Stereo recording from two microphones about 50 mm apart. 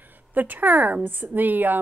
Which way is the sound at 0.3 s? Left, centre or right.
Right.